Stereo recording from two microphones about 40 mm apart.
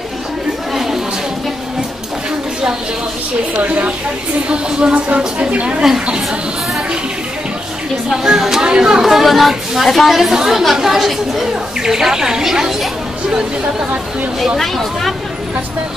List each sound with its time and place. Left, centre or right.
0.7 s a sound: centre
3.6 s speech: right
4.5 s speech: right
8.1 s speech: centre
8.6 s speech: right
9.0 s a woman's voice: centre
14.6 s a woman's voice: centre